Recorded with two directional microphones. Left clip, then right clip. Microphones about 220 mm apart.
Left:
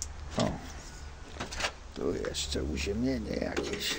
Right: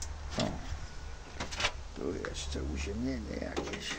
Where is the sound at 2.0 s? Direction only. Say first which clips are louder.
Left 6 dB; 45° left (ahead or behind).